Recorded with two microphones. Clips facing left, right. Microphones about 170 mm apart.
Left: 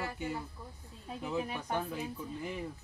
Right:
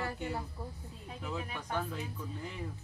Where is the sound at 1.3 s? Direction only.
10° left (ahead or behind).